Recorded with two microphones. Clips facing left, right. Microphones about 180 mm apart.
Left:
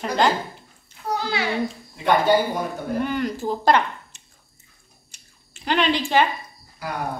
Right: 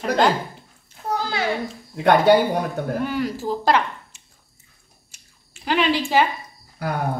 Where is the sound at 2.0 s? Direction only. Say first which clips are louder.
Right 3 dB; 70° right (ahead or behind).